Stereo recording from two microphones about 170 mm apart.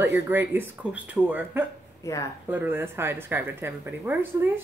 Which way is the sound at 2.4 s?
10° right (ahead or behind).